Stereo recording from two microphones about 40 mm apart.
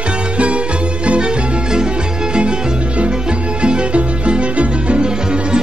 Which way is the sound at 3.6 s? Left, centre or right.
Right.